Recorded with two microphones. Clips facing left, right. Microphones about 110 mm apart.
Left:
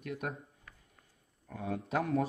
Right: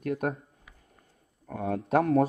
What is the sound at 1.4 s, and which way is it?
Speech, 55° right (ahead or behind).